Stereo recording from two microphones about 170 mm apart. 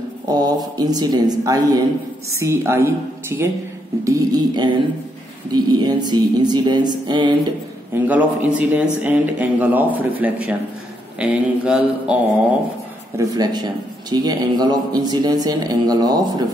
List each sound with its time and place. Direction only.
0.3 s a man's voice: 25° right (ahead or behind)
7.9 s a man's voice: 10° right (ahead or behind)
13.2 s a man's voice: 20° right (ahead or behind)